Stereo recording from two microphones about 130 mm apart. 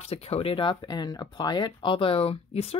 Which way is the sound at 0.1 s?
50° left (ahead or behind).